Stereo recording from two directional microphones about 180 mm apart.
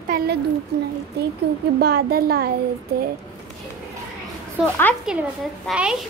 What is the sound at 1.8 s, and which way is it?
Speech, 60° right (ahead or behind).